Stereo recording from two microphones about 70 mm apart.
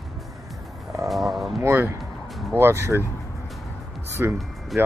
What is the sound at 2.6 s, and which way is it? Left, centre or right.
Speech, right.